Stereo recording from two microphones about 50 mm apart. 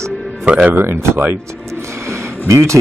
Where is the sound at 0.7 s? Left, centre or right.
Right.